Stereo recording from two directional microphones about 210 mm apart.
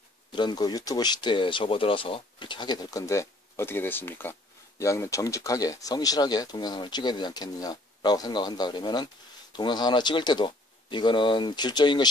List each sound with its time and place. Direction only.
0.3 s speech: 20° left (ahead or behind)